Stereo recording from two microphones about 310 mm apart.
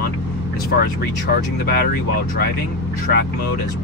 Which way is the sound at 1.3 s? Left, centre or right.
Left.